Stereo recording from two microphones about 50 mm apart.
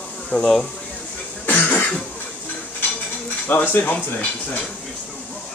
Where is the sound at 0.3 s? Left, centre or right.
Centre.